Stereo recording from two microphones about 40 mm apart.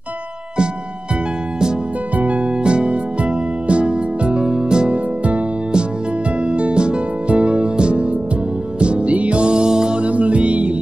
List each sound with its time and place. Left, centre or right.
2.1 s music: right
4.9 s music: right
6.4 s music: right
10.0 s music: right